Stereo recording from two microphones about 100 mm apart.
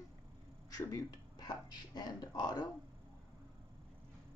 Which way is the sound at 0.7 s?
35° left (ahead or behind).